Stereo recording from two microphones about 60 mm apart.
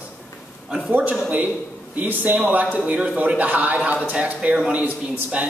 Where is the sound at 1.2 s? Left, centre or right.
Right.